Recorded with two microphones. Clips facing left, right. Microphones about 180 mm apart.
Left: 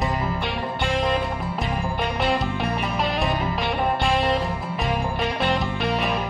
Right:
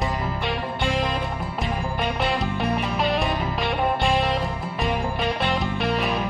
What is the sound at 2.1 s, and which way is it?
Music, centre (ahead or behind).